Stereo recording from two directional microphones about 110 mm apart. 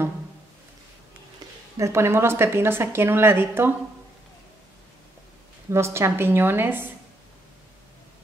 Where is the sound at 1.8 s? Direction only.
25° right (ahead or behind).